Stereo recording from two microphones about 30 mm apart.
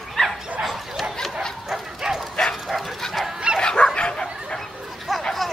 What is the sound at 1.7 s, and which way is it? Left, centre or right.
Bow-wow, centre.